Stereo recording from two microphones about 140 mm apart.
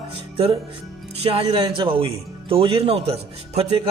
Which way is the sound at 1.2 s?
40° right (ahead or behind).